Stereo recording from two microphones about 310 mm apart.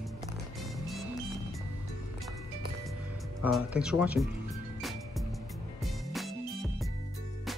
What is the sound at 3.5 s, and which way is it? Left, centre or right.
Speech, centre.